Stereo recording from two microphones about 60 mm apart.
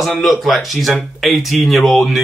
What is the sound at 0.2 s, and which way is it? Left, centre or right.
Speech, centre.